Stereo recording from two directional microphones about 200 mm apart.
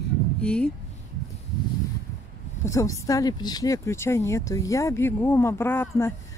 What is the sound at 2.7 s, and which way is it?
Speech, 15° left (ahead or behind).